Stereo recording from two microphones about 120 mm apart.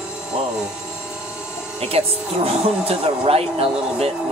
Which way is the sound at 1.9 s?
55° right (ahead or behind).